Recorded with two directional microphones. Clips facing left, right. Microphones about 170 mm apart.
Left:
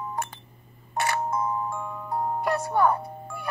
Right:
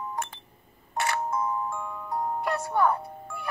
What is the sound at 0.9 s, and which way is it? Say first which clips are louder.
Music: left 2 dB; 25° left (ahead or behind).